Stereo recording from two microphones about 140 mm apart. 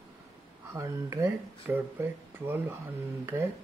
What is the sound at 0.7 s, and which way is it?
Speech, 20° right (ahead or behind).